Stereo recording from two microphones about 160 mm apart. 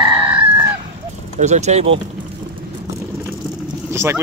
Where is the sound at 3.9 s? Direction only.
15° right (ahead or behind).